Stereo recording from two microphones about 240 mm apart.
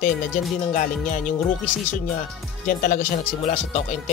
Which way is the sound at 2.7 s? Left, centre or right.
Left.